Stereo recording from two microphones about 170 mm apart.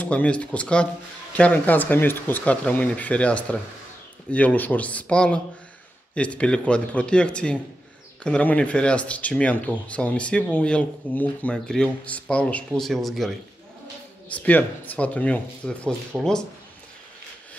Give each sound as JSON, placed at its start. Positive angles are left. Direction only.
{"t": 0.0, "sound": "speech", "side_deg": 5}
{"t": 14.3, "sound": "speech", "side_deg": 10}
{"t": 16.1, "sound": "speech", "side_deg": -10}